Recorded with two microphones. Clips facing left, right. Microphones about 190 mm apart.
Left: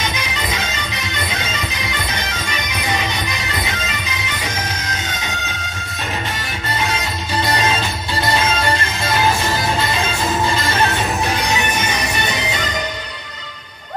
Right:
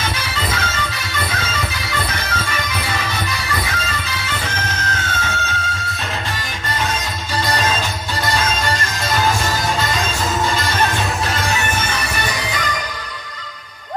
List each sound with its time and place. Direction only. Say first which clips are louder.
0.0 s music: even; 15° left (ahead or behind)
7.4 s music: left 1 dB; 10° left (ahead or behind)
11.2 s music: left 1 dB; 15° left (ahead or behind)